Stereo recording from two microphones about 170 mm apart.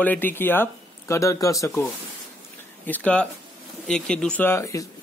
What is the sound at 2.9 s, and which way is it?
Speech, 10° left (ahead or behind).